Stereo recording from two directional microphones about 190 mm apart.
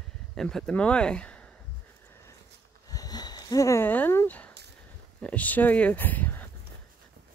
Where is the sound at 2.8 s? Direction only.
20° left (ahead or behind).